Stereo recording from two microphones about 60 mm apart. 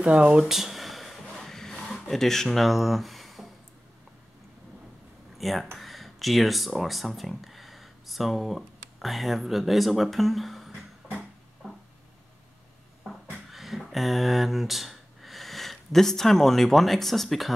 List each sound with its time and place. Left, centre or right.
0.0 s speech: centre
0.5 s a sound: centre
5.4 s speech: centre
13.3 s speech: centre